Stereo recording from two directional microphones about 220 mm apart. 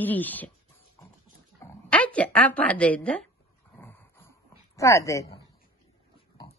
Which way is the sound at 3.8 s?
10° left (ahead or behind).